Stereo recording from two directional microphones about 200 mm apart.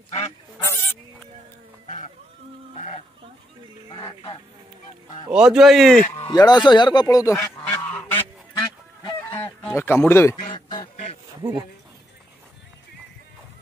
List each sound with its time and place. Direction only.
3.9 s music: 20° left (ahead or behind)
5.3 s a man's voice: 5° right (ahead or behind)
6.2 s speech: 20° left (ahead or behind)
7.3 s goose: 5° left (ahead or behind)
9.4 s a sound: 5° left (ahead or behind)
10.5 s a sound: 25° left (ahead or behind)